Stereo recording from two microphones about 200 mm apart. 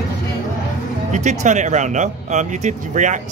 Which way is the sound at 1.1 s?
35° right (ahead or behind).